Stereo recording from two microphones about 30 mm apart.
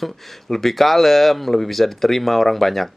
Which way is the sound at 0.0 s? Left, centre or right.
Centre.